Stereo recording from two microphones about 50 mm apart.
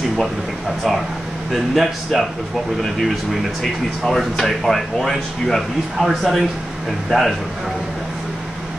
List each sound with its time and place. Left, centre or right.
1.5 s speech: centre